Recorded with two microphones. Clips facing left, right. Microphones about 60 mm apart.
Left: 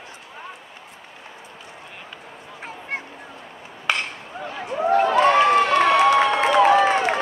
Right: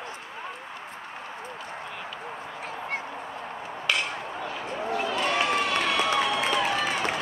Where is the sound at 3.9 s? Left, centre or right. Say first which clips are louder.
Left 3 dB; left.